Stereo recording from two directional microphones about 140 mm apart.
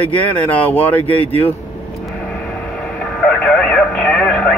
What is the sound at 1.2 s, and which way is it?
Speech, 45° left (ahead or behind).